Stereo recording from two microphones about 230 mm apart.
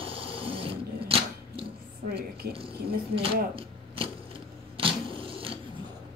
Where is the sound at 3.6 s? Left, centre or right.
Right.